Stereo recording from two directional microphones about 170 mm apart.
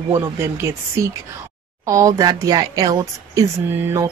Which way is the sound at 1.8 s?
20° right (ahead or behind).